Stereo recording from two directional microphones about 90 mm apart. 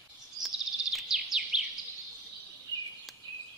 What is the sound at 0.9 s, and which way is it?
Chirp, 5° right (ahead or behind).